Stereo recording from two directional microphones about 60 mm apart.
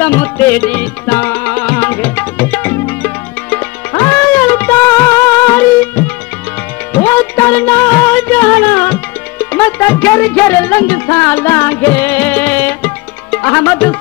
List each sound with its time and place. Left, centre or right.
0.0 s music: left
4.9 s music: left
6.9 s music: left